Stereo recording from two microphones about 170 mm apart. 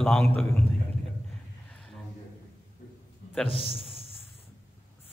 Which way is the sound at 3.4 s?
35° left (ahead or behind).